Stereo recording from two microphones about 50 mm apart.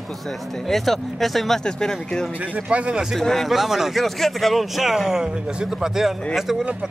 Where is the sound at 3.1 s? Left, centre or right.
Centre.